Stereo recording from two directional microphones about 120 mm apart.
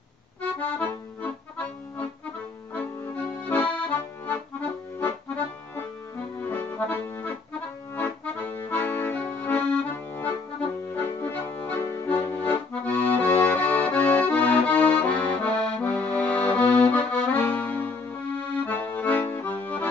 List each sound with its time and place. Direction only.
0.4 s accordion: 15° left (ahead or behind)
2.7 s accordion: 15° left (ahead or behind)